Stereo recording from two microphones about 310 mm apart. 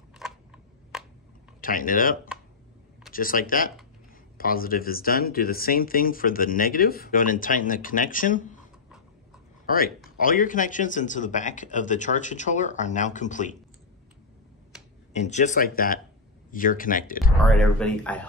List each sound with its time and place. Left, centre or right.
0.2 s a sound: centre
1.6 s speech: left
10.1 s speech: left
15.1 s speech: left
17.5 s speech: centre